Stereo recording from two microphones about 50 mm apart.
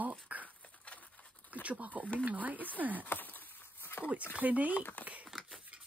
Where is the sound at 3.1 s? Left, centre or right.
Left.